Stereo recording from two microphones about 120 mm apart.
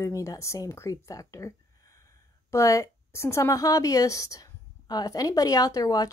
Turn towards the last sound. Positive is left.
turn(degrees=30)  # may be behind; listen again after turning